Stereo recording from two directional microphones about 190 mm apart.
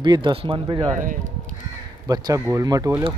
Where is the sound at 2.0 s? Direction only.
20° right (ahead or behind).